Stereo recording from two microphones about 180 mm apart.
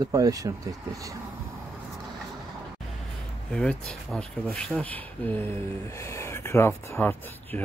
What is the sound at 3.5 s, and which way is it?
Speech, 5° left (ahead or behind).